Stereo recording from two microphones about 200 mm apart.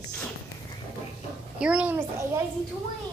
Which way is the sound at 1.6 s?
5° right (ahead or behind).